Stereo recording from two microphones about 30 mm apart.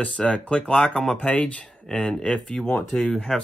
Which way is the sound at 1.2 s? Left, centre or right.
Left.